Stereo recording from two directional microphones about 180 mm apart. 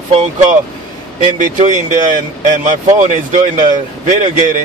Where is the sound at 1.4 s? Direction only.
45° right (ahead or behind).